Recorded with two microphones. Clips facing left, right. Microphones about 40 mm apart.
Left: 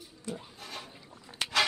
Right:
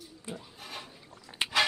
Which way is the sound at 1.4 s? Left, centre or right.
Right.